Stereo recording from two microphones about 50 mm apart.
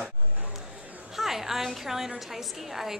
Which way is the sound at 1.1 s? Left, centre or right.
Centre.